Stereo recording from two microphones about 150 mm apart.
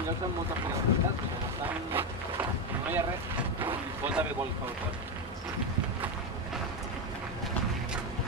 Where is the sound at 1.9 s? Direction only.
15° right (ahead or behind).